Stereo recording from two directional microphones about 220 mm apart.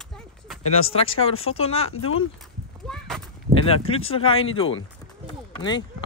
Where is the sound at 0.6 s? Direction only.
70° left (ahead or behind).